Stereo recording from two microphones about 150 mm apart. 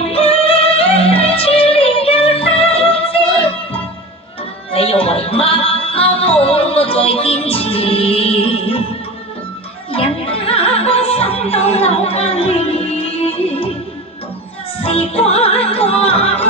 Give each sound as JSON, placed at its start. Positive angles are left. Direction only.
{"t": 0.0, "sound": "music", "side_deg": 40}
{"t": 4.7, "sound": "music", "side_deg": 40}
{"t": 9.9, "sound": "music", "side_deg": 40}
{"t": 14.8, "sound": "music", "side_deg": 40}